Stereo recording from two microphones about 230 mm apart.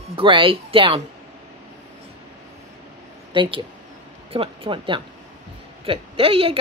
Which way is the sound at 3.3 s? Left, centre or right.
Right.